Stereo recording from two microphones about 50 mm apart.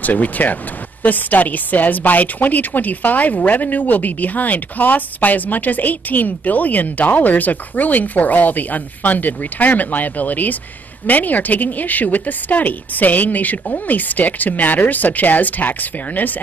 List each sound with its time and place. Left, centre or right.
0.0 s speech: left